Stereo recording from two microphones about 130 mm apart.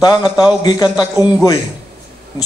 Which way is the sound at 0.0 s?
30° left (ahead or behind).